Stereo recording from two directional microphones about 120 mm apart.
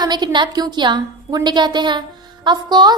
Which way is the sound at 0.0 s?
35° right (ahead or behind).